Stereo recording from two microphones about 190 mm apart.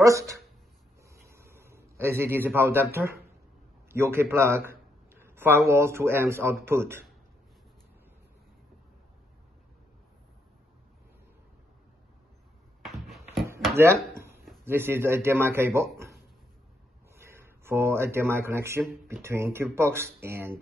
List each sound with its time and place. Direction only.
0.0 s speech: 15° right (ahead or behind)
1.0 s a sound: 15° right (ahead or behind)
3.9 s a man's voice: 15° right (ahead or behind)
12.8 s a sound: centre (ahead or behind)
14.6 s speech: 10° right (ahead or behind)
17.1 s speech: 15° right (ahead or behind)